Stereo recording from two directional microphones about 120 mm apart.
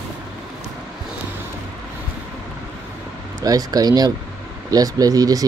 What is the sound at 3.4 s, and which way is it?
Speech, 30° right (ahead or behind).